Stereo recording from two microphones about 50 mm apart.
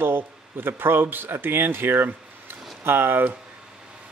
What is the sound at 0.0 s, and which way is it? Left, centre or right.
A man's voice, right.